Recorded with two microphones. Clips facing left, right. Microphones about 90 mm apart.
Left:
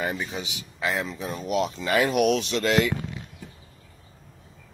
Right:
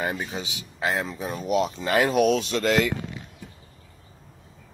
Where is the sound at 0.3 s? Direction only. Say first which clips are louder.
Right 1 dB; 35° right (ahead or behind).